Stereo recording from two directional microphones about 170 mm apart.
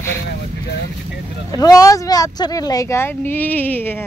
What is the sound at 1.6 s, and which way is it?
Speech, 20° left (ahead or behind).